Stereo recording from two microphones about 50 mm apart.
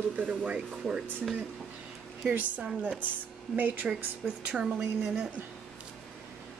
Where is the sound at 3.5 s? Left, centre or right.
Right.